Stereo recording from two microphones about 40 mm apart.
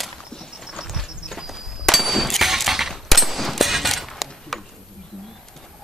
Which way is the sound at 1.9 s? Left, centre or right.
Centre.